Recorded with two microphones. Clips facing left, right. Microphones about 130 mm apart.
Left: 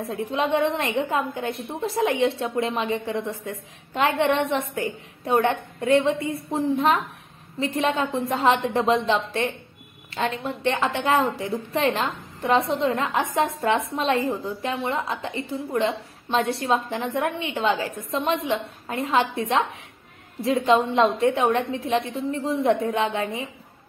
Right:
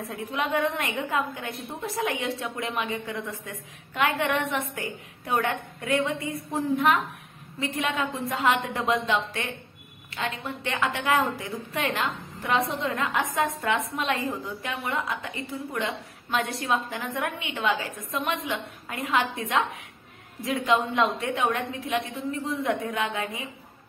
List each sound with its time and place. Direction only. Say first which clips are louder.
0.1 s a woman's voice: left 4 dB; 30° left (ahead or behind)